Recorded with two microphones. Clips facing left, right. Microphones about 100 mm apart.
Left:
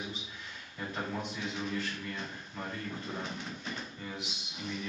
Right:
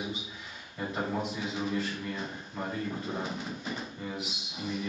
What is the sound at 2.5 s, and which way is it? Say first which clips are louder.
Drawer open or close: right 6 dB; 15° right (ahead or behind).